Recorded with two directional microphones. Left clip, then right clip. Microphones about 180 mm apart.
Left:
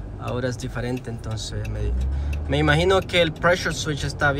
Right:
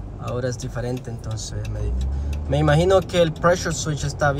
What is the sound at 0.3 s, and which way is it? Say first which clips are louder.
Speech: right 1 dB; 15° right (ahead or behind).